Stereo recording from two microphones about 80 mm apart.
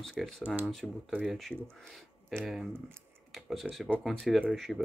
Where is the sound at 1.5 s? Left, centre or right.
Centre.